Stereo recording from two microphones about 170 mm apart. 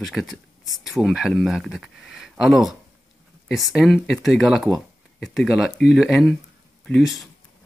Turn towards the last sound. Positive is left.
turn(degrees=0)  # may be behind; listen again after turning